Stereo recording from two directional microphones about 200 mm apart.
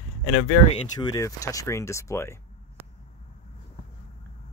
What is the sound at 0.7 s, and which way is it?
Speech, 20° left (ahead or behind).